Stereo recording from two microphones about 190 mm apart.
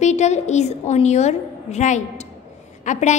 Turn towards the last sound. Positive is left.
turn(degrees=40)  # may be behind; listen again after turning